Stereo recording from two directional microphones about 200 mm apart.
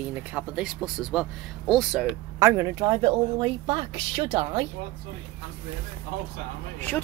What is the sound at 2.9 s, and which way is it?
Speech, 25° right (ahead or behind).